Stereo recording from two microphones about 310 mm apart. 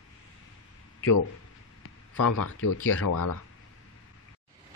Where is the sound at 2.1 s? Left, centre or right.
Left.